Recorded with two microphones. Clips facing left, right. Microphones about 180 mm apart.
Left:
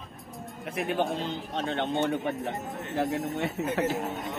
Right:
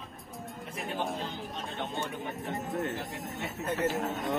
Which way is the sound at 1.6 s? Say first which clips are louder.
Left 9 dB; 90° left.